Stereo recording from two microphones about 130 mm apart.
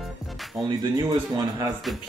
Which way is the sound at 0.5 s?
Centre (ahead or behind).